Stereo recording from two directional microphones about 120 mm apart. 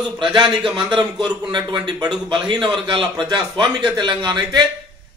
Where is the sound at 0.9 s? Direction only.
35° right (ahead or behind).